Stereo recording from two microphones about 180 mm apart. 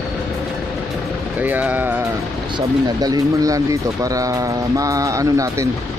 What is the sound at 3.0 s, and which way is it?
Speech, 20° right (ahead or behind).